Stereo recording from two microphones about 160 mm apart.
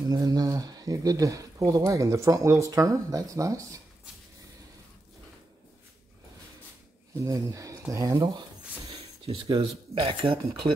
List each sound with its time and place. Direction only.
0.1 s speech: 25° right (ahead or behind)
7.2 s speech: 20° right (ahead or behind)
9.2 s speech: 35° right (ahead or behind)